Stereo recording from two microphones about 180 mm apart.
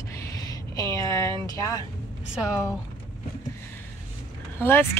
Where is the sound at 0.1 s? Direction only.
20° left (ahead or behind).